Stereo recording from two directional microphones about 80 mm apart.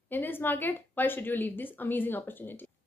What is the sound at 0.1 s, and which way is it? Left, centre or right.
Speech, left.